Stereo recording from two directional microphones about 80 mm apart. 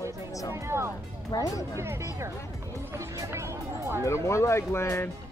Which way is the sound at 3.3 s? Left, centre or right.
Right.